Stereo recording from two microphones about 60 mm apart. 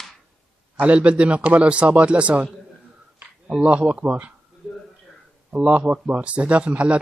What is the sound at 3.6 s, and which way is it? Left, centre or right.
Speech, right.